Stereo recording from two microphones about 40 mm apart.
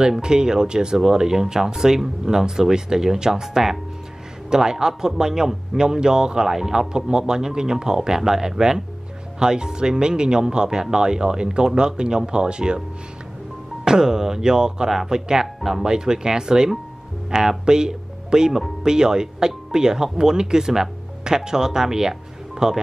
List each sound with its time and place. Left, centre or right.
0.2 s speech: centre
13.8 s speech: centre
15.4 s speech: centre
15.8 s speech: centre